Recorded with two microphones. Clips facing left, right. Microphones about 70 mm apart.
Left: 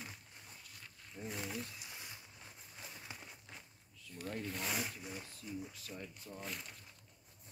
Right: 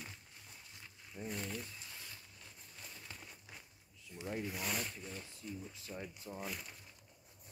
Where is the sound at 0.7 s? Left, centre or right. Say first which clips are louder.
Even; right.